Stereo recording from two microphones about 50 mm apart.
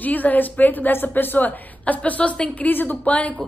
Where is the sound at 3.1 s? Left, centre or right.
Left.